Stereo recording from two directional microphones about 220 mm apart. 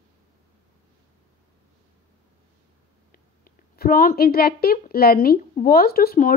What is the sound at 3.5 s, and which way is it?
A woman's voice, 40° left (ahead or behind).